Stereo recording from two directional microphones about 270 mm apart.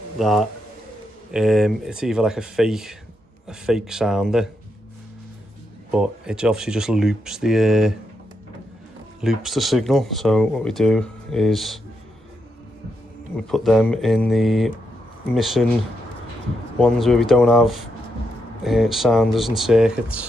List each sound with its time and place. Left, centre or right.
0.2 s speech: centre
5.9 s speech: centre
9.2 s speech: centre
13.5 s speech: centre
16.7 s speech: centre